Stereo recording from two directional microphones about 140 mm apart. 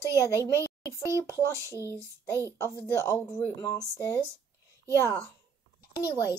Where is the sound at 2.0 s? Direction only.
20° right (ahead or behind).